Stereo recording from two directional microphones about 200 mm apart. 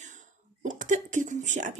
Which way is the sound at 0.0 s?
40° right (ahead or behind).